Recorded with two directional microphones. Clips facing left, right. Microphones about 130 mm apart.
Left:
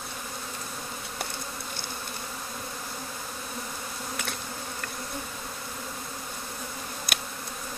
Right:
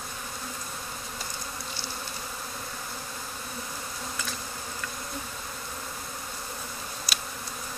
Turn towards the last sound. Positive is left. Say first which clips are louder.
# left 2 dB
turn(degrees=55)  # may be behind; listen again after turning